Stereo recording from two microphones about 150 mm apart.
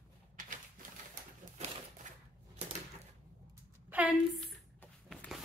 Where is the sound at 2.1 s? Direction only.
55° right (ahead or behind).